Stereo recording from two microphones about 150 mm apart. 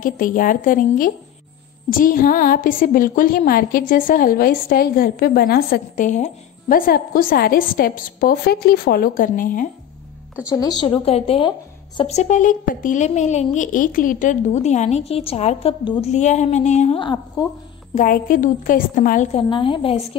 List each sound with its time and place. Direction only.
0.0 s a woman's voice: 65° left (ahead or behind)
6.9 s a woman's voice: 75° left (ahead or behind)
10.5 s speech: 25° left (ahead or behind)
11.1 s a woman's voice: 40° left (ahead or behind)
13.6 s a woman's voice: 65° left (ahead or behind); by 16.1 s 35° left (ahead or behind)
16.1 s a woman's voice: 50° left (ahead or behind)
17.0 s a woman's voice: 25° left (ahead or behind)
17.9 s a woman's voice: 65° left (ahead or behind)
19.3 s a woman's voice: 35° left (ahead or behind)